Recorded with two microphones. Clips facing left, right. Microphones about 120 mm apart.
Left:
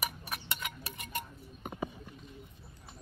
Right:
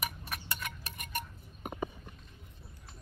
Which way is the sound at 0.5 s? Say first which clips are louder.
Left 1 dB; 20° left (ahead or behind).